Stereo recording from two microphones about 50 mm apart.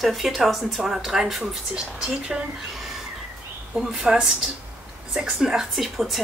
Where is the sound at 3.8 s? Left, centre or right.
Centre.